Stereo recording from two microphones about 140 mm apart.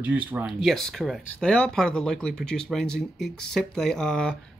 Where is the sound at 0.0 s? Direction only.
10° right (ahead or behind).